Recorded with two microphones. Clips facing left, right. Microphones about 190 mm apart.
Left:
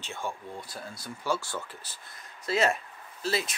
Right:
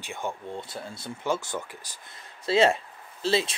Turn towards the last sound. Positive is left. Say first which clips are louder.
# right 5 dB
turn(degrees=-25)  # may be behind; listen again after turning